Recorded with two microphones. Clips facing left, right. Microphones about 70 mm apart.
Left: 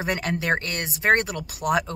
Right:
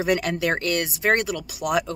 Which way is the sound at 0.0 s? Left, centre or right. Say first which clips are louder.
Right 4 dB; left.